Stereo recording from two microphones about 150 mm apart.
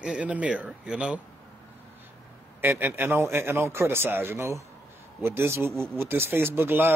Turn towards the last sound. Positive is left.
turn(degrees=-15)  # may be behind; listen again after turning